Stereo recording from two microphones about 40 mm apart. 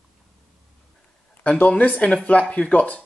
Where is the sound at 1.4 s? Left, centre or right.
Left.